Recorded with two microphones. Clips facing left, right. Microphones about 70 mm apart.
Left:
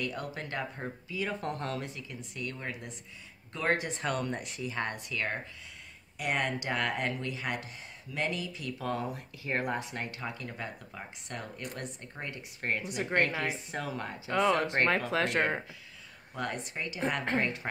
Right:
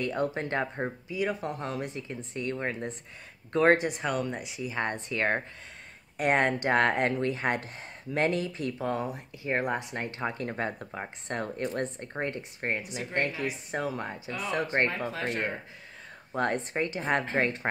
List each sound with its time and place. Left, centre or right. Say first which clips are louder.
0.0 s speech: right 7 dB; right
1.1 s speech: right 3 dB; centre
2.0 s speech: right 5 dB; right
3.7 s speech: right 6 dB; right
4.0 s speech: right 2 dB; centre
4.6 s speech: right 4 dB; right
6.1 s speech: right 7 dB; right
8.7 s speech: left 1 dB; right
9.9 s speech: right 5 dB; right
12.9 s a woman's voice: left 2 dB; left
13.7 s speech: right 4 dB; right
14.2 s a woman's voice: left 8 dB; left
14.9 s speech: left 3 dB; left
16.3 s speech: right 8 dB; right